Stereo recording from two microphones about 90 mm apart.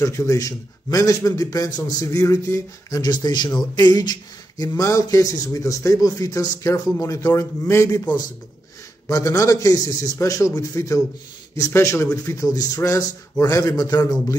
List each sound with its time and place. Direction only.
0.0 s speech: 35° left (ahead or behind)
3.0 s speech: 50° left (ahead or behind)
9.1 s speech: 40° left (ahead or behind)